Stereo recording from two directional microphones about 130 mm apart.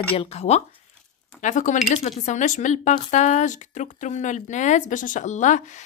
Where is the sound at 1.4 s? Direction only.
75° left (ahead or behind).